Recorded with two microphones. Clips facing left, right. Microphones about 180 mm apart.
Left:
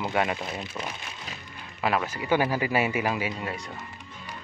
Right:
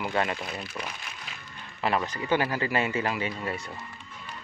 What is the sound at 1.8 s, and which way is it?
Speech, 5° left (ahead or behind).